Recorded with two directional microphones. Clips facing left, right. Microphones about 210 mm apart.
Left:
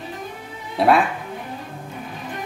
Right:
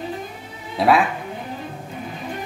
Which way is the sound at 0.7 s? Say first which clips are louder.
Even; centre (ahead or behind).